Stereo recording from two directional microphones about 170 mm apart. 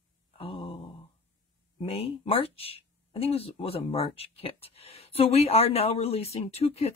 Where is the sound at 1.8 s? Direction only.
35° left (ahead or behind).